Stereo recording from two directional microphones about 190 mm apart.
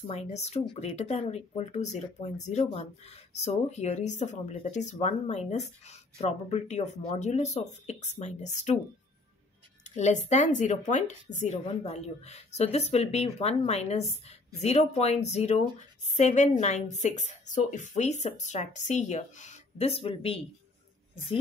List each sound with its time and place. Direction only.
0.0 s a woman's voice: 35° left (ahead or behind)
9.9 s a woman's voice: 35° left (ahead or behind)